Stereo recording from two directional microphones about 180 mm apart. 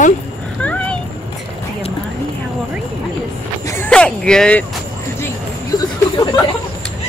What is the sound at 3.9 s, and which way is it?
Speech, 5° left (ahead or behind).